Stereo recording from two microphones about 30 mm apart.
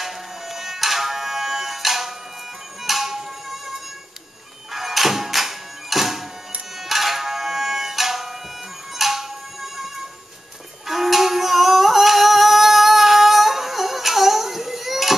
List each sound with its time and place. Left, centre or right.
0.0 s music: centre
4.7 s music: centre
10.9 s music: centre